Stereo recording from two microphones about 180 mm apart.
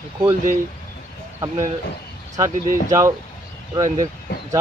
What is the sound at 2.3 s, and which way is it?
Speech, 20° right (ahead or behind).